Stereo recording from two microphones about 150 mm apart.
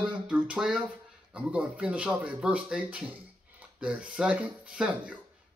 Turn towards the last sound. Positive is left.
turn(degrees=-5)  # may be behind; listen again after turning